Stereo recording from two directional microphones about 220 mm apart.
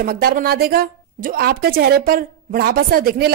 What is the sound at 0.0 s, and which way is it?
A woman's voice, 45° right (ahead or behind).